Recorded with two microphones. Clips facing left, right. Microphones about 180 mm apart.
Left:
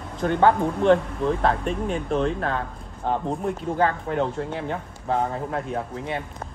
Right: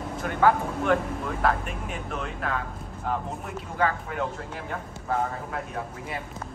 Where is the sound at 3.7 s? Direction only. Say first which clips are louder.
Left 2 dB; 35° left (ahead or behind).